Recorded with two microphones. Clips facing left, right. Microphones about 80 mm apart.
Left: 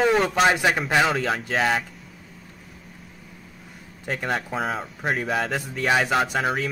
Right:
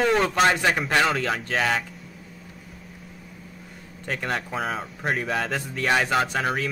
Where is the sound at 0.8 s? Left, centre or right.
Centre.